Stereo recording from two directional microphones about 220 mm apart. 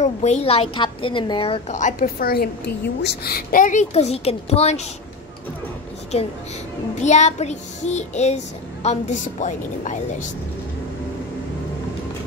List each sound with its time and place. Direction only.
0.0 s a woman's voice: 30° left (ahead or behind)
7.0 s a woman's voice: 30° left (ahead or behind)